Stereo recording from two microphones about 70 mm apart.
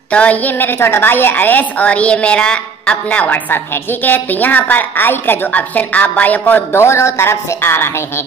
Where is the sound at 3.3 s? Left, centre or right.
Left.